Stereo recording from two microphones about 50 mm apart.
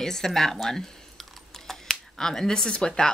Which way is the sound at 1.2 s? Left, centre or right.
Centre.